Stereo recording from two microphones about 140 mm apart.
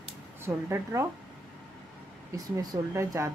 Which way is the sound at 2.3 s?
25° right (ahead or behind).